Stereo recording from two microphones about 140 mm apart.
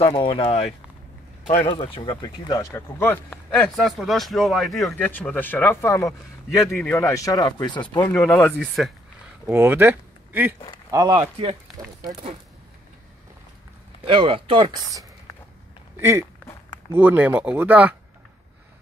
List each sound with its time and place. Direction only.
0.0 s speech: 40° left (ahead or behind); by 3.3 s 15° left (ahead or behind)
3.5 s speech: centre (ahead or behind)
5.0 s a man's voice: 10° left (ahead or behind)
6.7 s speech: 5° left (ahead or behind)
7.0 s speech: 20° left (ahead or behind)
8.0 s a man's voice: 15° left (ahead or behind)
9.5 s speech: 15° right (ahead or behind)
10.9 s speech: 30° right (ahead or behind)
14.0 s speech: 40° right (ahead or behind)
16.0 s speech: 20° right (ahead or behind)